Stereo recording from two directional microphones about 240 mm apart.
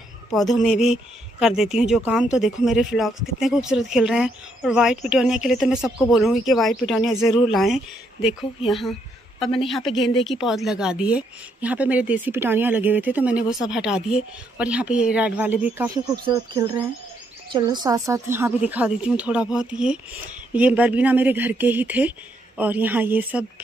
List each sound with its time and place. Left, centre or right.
0.3 s speech: centre